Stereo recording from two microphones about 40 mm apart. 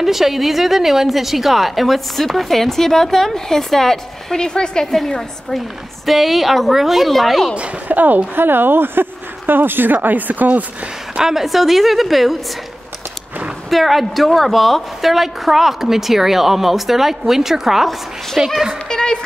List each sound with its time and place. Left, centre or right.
0.0 s a woman's voice: centre
4.9 s a woman's voice: centre
6.0 s a woman's voice: centre
7.9 s speech: right
8.4 s speech: right
10.0 s speech: right
11.1 s a child's voice: centre
11.4 s a woman's voice: centre
13.7 s a woman's voice: centre
18.9 s a sound: centre